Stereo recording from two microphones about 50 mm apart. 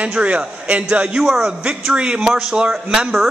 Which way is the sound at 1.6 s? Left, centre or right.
Right.